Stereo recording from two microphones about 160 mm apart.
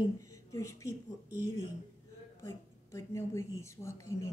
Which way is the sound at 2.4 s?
20° left (ahead or behind).